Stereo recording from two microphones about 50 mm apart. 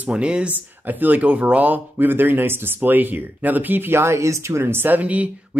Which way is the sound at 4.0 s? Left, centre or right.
Right.